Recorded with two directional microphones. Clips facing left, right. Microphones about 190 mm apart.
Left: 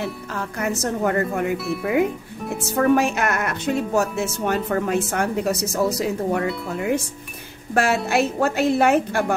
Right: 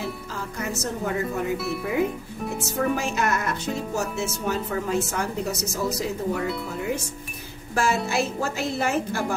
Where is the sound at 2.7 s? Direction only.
65° left (ahead or behind).